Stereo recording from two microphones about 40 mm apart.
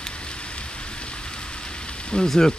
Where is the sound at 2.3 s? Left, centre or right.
Centre.